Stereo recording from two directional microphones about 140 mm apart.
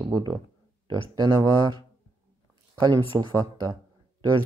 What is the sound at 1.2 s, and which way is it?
Speech, 30° right (ahead or behind).